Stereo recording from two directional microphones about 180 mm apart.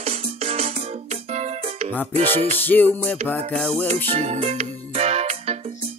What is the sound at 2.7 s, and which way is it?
Music, 10° left (ahead or behind).